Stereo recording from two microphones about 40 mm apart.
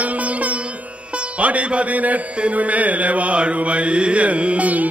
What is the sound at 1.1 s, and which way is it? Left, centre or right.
A man's voice, right.